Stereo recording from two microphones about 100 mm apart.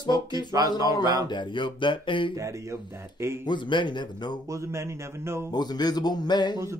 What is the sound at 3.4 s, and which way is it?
Music, 50° left (ahead or behind).